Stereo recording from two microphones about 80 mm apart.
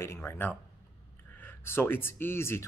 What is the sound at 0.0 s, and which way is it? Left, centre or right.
Speech, left.